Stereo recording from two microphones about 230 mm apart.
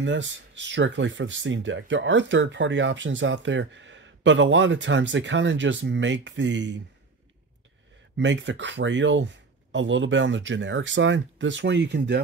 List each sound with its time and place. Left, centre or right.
0.0 s speech: right
8.2 s speech: right